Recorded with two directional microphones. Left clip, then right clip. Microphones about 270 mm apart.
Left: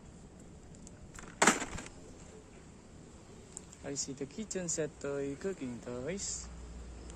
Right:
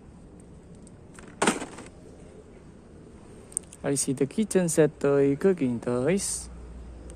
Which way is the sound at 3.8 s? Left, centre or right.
Right.